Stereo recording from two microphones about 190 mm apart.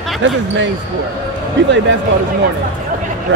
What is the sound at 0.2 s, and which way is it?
Speech, 75° right (ahead or behind).